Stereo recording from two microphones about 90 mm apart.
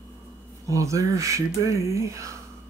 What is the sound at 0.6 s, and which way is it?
Speech, 40° right (ahead or behind).